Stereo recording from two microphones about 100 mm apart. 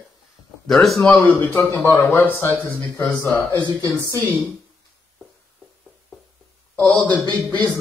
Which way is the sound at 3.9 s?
30° left (ahead or behind).